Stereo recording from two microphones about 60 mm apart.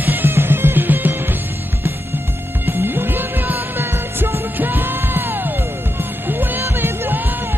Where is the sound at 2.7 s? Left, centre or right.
Right.